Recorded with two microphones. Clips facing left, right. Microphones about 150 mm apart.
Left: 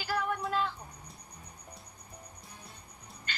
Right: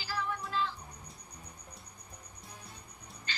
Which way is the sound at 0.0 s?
55° left (ahead or behind).